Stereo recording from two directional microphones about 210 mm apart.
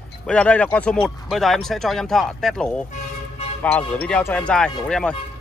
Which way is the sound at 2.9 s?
30° left (ahead or behind).